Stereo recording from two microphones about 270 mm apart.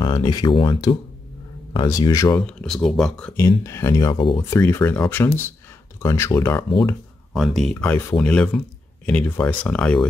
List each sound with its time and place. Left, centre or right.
0.0 s speech: centre
7.3 s speech: centre